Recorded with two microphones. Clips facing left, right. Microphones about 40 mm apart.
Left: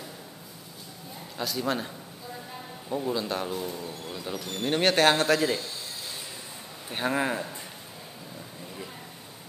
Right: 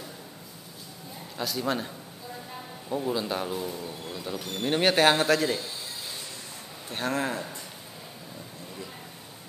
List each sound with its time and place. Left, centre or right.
1.4 s speech: centre
2.9 s a man's voice: centre
6.9 s a man's voice: centre